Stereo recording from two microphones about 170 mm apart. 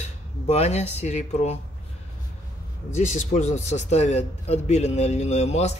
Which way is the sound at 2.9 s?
45° left (ahead or behind).